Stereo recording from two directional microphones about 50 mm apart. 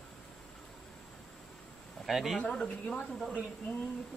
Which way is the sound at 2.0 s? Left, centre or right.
Centre.